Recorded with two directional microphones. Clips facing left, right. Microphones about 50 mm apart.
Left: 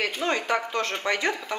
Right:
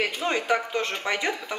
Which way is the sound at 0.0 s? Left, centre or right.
Centre.